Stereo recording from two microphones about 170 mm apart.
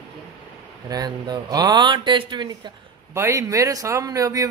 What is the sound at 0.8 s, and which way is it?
A man's voice, 25° right (ahead or behind).